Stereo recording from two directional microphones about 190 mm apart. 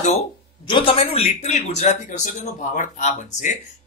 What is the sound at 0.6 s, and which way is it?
Speech, 25° left (ahead or behind).